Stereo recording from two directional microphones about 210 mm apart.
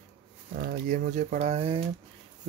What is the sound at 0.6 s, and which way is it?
Speech, 45° right (ahead or behind).